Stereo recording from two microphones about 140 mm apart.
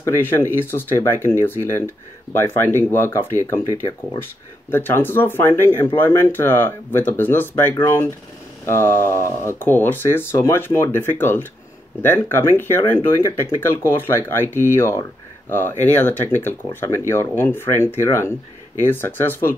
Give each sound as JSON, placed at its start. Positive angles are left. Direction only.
{"t": 0.0, "sound": "speech", "side_deg": 15}
{"t": 4.6, "sound": "speech", "side_deg": 15}